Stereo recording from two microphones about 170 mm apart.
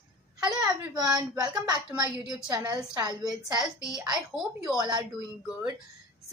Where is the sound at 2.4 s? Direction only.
20° right (ahead or behind).